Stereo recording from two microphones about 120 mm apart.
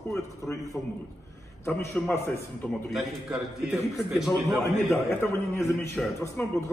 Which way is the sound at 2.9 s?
5° right (ahead or behind).